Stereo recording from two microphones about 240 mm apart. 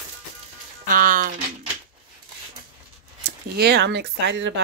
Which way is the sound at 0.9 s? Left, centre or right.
Right.